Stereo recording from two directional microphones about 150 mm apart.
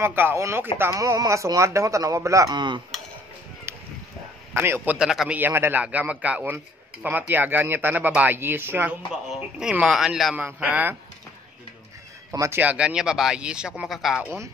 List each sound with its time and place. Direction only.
0.0 s a man's voice: 15° right (ahead or behind); by 2.8 s 30° right (ahead or behind)
4.6 s a man's voice: 15° right (ahead or behind)
5.4 s a man's voice: 15° right (ahead or behind)
12.3 s speech: 20° right (ahead or behind); by 14.2 s centre (ahead or behind)
14.2 s a man's voice: 15° right (ahead or behind)